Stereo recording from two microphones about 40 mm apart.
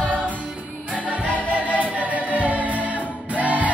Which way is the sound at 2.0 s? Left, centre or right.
Right.